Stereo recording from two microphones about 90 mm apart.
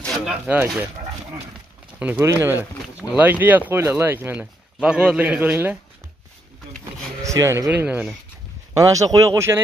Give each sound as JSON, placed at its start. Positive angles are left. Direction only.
{"t": 0.1, "sound": "a sound", "side_deg": -5}
{"t": 2.0, "sound": "speech", "side_deg": -20}
{"t": 3.0, "sound": "a man's voice", "side_deg": -15}
{"t": 7.2, "sound": "speech", "side_deg": -35}
{"t": 7.7, "sound": "a man's voice", "side_deg": -15}
{"t": 8.7, "sound": "speech", "side_deg": -40}